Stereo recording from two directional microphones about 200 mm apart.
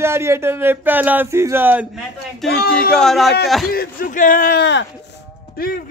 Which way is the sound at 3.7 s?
45° left (ahead or behind).